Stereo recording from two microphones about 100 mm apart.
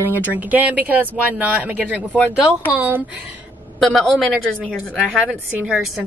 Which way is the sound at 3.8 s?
5° left (ahead or behind).